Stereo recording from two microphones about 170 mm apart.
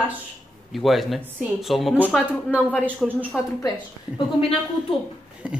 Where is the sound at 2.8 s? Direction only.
5° right (ahead or behind).